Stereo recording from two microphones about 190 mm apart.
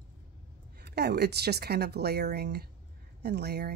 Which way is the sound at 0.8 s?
60° right (ahead or behind).